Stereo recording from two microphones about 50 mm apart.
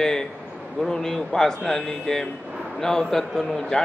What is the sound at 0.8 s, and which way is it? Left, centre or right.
A man's voice, centre.